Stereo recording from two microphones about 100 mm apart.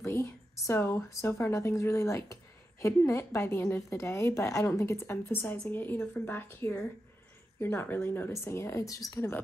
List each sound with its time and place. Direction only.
0.0 s a woman's voice: 25° left (ahead or behind)